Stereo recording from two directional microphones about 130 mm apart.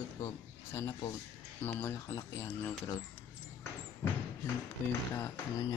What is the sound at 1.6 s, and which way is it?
Speech, 20° left (ahead or behind).